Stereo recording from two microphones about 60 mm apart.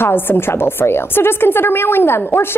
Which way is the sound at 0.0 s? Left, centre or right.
Left.